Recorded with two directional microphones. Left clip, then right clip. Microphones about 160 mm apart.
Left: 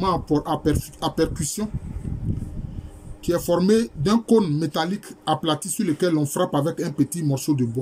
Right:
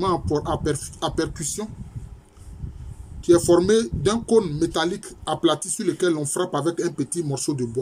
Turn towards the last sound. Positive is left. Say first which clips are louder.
# left 2 dB
turn(degrees=5)  # may be behind; listen again after turning